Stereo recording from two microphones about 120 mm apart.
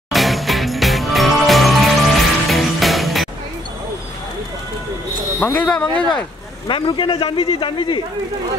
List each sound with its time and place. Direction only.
0.1 s music: centre (ahead or behind)
5.4 s speech: 10° left (ahead or behind)
6.7 s speech: 45° left (ahead or behind)